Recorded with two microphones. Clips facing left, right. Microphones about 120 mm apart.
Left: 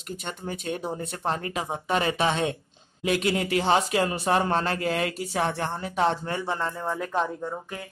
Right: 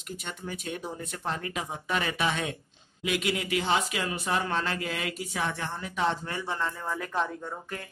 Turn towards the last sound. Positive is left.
turn(degrees=30)  # may be behind; listen again after turning